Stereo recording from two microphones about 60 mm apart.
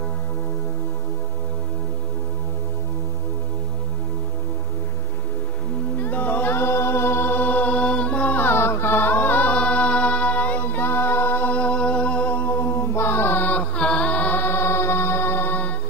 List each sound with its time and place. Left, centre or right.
5.9 s music: left
12.4 s mantra: left
13.7 s chant: centre
14.4 s music: left